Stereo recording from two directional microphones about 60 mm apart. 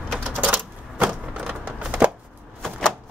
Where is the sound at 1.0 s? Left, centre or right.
Centre.